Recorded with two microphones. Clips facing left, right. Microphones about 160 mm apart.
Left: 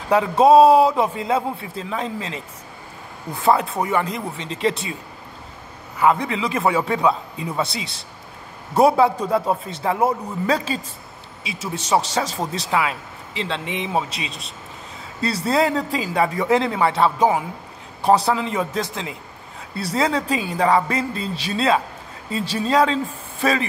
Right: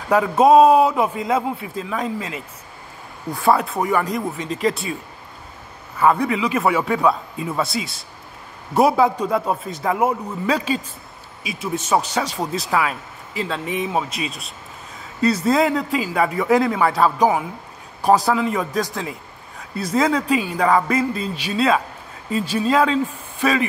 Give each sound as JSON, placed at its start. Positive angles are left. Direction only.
{"t": 0.1, "sound": "speech", "side_deg": 30}
{"t": 5.9, "sound": "speech", "side_deg": 20}
{"t": 8.7, "sound": "speech", "side_deg": 30}
{"t": 11.9, "sound": "speech", "side_deg": 35}